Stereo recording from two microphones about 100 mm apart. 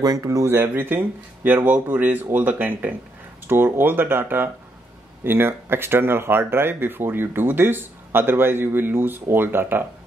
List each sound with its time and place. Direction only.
0.0 s speech: 35° right (ahead or behind)
0.5 s speech: 20° right (ahead or behind)